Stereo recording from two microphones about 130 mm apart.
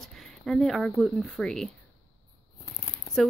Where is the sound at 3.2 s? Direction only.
5° left (ahead or behind).